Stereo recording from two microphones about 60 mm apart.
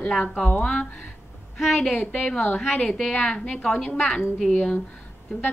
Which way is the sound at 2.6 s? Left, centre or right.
Centre.